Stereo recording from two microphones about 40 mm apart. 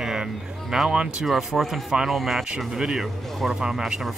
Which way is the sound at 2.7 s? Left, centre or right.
Centre.